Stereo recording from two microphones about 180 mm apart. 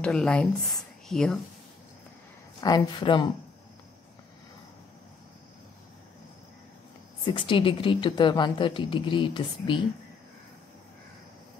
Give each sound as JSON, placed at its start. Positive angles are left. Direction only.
{"t": 0.0, "sound": "speech", "side_deg": 5}
{"t": 2.6, "sound": "a woman's voice", "side_deg": 25}
{"t": 7.2, "sound": "a woman's voice", "side_deg": 30}